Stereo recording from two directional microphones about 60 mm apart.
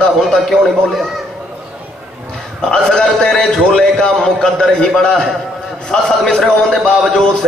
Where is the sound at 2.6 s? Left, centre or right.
Centre.